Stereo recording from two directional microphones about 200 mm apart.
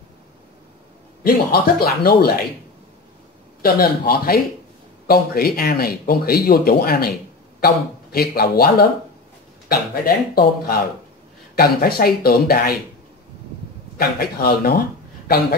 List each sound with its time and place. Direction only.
1.2 s speech: 50° left (ahead or behind)
3.6 s speech: 50° left (ahead or behind)
13.9 s speech: 50° left (ahead or behind)